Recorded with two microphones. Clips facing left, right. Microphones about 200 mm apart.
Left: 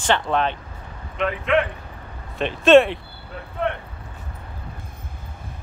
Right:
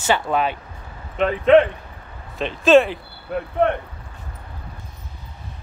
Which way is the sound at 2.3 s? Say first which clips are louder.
Left 1 dB; centre (ahead or behind).